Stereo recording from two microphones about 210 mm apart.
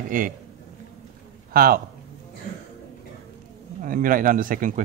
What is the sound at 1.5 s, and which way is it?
Speech, 45° right (ahead or behind).